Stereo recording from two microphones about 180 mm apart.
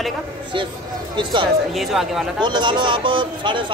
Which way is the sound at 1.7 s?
Centre (ahead or behind).